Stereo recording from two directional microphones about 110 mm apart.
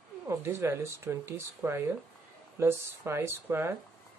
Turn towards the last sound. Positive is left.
turn(degrees=-20)  # may be behind; listen again after turning